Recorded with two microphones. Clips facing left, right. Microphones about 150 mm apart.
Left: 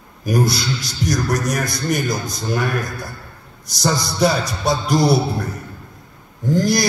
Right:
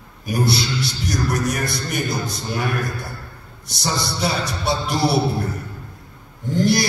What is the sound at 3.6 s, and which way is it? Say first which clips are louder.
A man's voice: left 4 dB; 40° left (ahead or behind).